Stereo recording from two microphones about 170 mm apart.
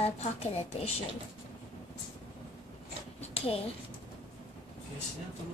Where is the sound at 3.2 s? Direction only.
35° left (ahead or behind).